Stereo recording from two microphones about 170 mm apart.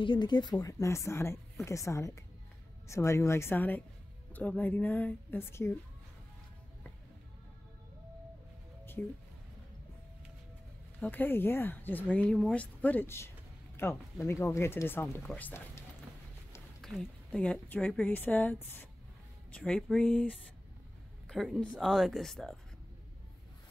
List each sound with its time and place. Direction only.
0.0 s speech: 25° left (ahead or behind)
9.0 s speech: 10° left (ahead or behind)
11.0 s speech: 10° left (ahead or behind)
16.8 s speech: 5° left (ahead or behind)
21.3 s speech: centre (ahead or behind)